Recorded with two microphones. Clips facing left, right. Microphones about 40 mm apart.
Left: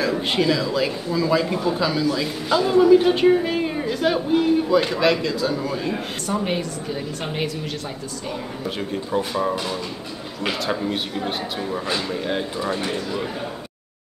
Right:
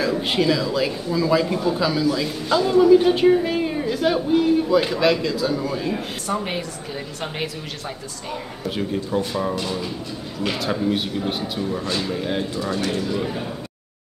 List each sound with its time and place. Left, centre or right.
0.0 s a man's voice: centre
12.5 s speech: centre
13.0 s a man's voice: centre